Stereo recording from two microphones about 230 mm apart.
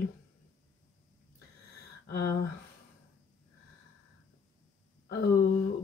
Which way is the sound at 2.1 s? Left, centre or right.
Left.